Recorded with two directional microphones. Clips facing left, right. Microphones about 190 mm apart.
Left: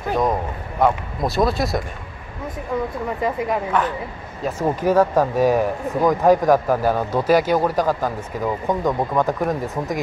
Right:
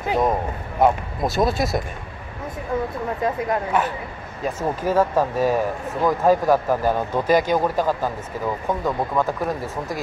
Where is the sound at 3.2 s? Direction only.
Centre (ahead or behind).